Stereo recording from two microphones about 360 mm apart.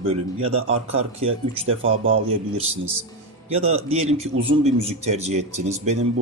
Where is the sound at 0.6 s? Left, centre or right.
Right.